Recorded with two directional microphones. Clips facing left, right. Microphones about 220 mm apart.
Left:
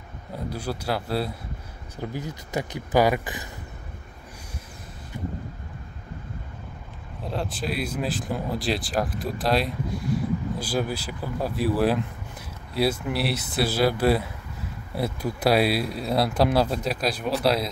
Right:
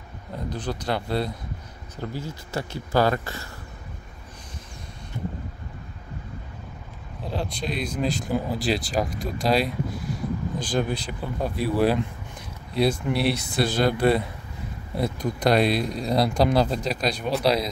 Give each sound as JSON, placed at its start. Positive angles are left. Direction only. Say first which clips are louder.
{"t": 0.5, "sound": "speech", "louder": "right 1 dB", "side_deg": 10}
{"t": 2.0, "sound": "speech", "louder": "even", "side_deg": 15}
{"t": 7.2, "sound": "speech", "louder": "even", "side_deg": 0}